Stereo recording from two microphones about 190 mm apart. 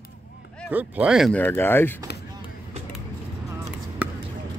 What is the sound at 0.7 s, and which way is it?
Speech, 10° right (ahead or behind).